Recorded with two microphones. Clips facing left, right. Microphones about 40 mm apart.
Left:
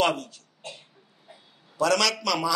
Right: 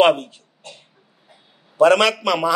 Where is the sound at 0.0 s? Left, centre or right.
Right.